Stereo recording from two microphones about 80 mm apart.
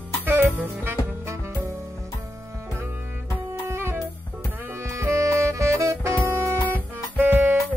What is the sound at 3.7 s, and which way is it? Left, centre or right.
Music, right.